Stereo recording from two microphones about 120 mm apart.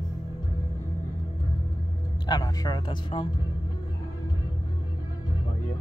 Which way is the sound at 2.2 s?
35° left (ahead or behind).